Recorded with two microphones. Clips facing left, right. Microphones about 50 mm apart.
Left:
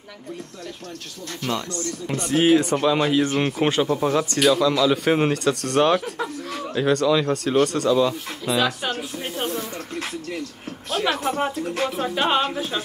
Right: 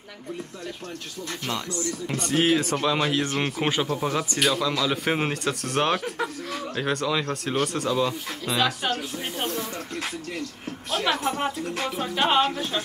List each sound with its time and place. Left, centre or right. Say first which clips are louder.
1.7 s speech: even; left
2.0 s speech: left 4 dB; centre
10.9 s speech: left 2 dB; centre